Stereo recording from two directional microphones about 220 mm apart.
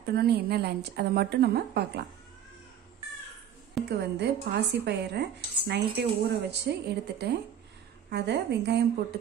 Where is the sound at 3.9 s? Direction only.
50° right (ahead or behind).